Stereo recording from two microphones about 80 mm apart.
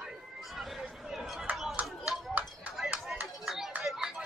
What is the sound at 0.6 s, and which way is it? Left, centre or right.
Chatter, centre.